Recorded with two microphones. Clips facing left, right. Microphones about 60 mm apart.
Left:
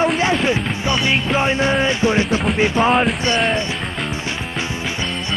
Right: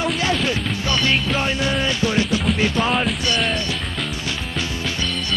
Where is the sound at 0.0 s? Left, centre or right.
Left.